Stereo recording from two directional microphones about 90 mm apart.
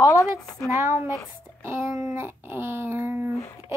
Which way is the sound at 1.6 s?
30° right (ahead or behind).